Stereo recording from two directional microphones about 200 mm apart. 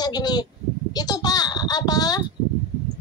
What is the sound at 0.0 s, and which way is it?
Speech, 20° left (ahead or behind).